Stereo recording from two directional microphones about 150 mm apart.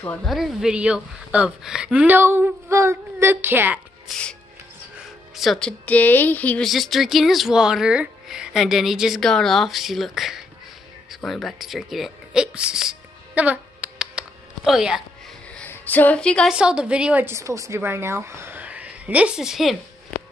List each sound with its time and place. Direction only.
0.0 s speech: 10° left (ahead or behind)
0.3 s a woman's voice: centre (ahead or behind)
4.1 s a woman's voice: 5° left (ahead or behind)
11.1 s a sound: centre (ahead or behind)
15.5 s a woman's voice: 10° left (ahead or behind)
16.5 s a woman's voice: 5° right (ahead or behind)